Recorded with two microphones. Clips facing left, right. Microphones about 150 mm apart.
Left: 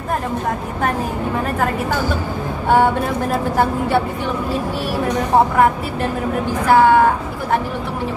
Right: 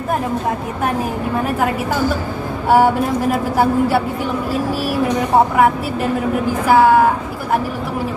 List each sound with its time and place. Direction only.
2.7 s speech: 5° right (ahead or behind)
6.7 s speech: 5° right (ahead or behind)